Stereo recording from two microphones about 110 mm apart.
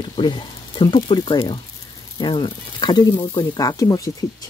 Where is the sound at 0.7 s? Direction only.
45° left (ahead or behind).